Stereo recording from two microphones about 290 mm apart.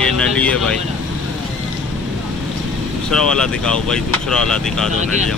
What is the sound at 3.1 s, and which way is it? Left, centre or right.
Speech, centre.